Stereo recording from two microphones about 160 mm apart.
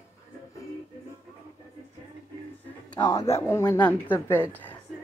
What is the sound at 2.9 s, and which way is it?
A man's voice, 20° left (ahead or behind).